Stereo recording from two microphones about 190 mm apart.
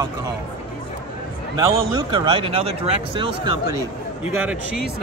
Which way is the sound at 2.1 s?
25° right (ahead or behind).